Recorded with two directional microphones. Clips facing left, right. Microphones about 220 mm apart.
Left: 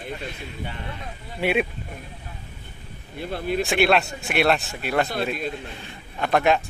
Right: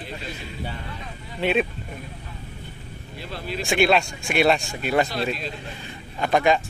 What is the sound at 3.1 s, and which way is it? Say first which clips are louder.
Speech: left 6 dB; 50° left (ahead or behind).